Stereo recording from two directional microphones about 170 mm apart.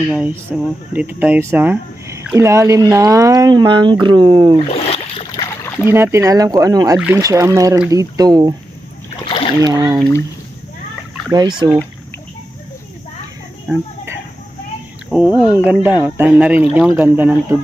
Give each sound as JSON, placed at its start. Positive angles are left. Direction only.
{"t": 0.1, "sound": "speech", "side_deg": -10}
{"t": 4.6, "sound": "boat", "side_deg": 35}
{"t": 5.3, "sound": "a sound", "side_deg": 20}
{"t": 5.9, "sound": "speech", "side_deg": -15}
{"t": 9.2, "sound": "splash", "side_deg": 30}
{"t": 9.6, "sound": "speech", "side_deg": -20}
{"t": 11.3, "sound": "speech", "side_deg": -20}
{"t": 15.0, "sound": "speech", "side_deg": -10}